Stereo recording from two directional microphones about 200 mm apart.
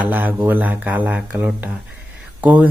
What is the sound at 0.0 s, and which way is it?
Speech, 10° right (ahead or behind).